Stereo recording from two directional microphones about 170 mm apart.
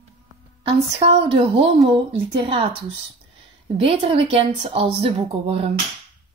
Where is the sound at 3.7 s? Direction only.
30° right (ahead or behind).